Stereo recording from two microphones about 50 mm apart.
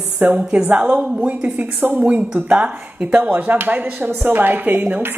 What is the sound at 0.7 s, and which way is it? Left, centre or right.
Speech, right.